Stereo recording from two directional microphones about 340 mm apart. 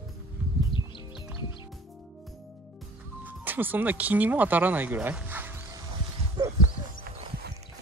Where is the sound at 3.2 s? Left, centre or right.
Centre.